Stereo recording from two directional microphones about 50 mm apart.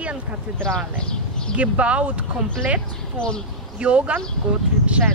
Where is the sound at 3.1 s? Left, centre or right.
Centre.